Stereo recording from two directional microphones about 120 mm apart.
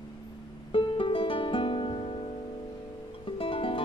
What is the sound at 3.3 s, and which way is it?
Music, 50° left (ahead or behind).